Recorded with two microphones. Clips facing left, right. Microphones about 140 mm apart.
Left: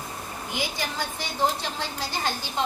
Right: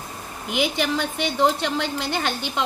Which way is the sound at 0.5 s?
75° right (ahead or behind).